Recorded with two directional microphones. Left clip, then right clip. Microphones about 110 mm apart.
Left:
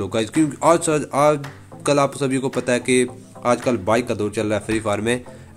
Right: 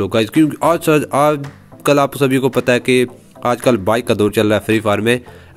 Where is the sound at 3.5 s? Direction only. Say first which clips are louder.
Right 5 dB; 70° right (ahead or behind); by 5.2 s 40° right (ahead or behind).